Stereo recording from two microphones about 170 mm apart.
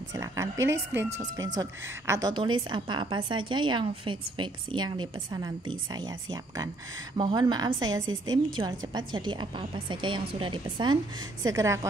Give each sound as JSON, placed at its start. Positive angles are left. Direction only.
{"t": 0.1, "sound": "a woman's voice", "side_deg": -20}
{"t": 1.6, "sound": "a woman's voice", "side_deg": -20}